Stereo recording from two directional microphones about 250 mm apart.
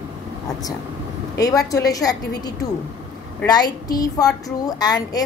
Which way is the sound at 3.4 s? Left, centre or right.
Centre.